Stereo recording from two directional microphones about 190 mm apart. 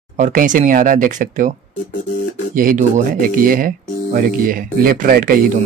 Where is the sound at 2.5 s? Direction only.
45° right (ahead or behind).